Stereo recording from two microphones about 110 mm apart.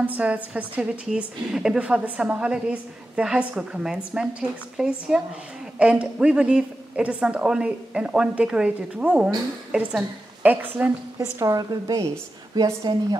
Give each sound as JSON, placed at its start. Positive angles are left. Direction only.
{"t": 0.0, "sound": "a woman's voice", "side_deg": -15}
{"t": 11.3, "sound": "a woman's voice", "side_deg": -35}